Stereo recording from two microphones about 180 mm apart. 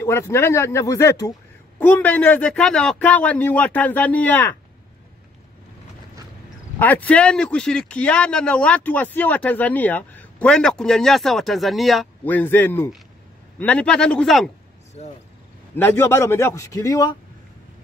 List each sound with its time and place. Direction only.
0.0 s speech: 15° left (ahead or behind)
6.8 s a man's voice: 10° left (ahead or behind)
15.7 s speech: 10° left (ahead or behind)